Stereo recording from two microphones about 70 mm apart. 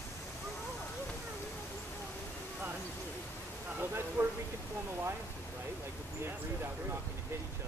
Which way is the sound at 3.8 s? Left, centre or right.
Right.